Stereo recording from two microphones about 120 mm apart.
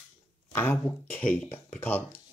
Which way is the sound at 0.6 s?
20° left (ahead or behind).